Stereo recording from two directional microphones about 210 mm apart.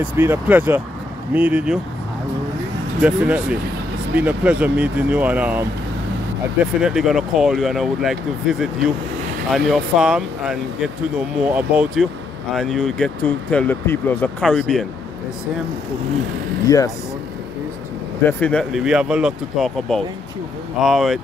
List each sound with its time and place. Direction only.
0.2 s speech: 10° right (ahead or behind)
3.0 s speech: 5° right (ahead or behind)
16.6 s speech: 15° left (ahead or behind)
18.2 s speech: 5° left (ahead or behind)